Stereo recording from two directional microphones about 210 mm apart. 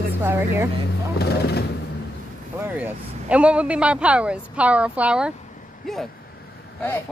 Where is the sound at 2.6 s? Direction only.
5° right (ahead or behind).